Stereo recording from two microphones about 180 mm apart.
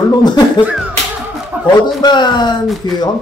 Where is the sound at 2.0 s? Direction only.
25° left (ahead or behind).